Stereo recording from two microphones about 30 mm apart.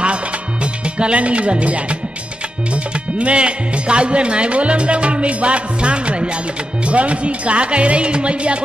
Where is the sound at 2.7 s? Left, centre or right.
Right.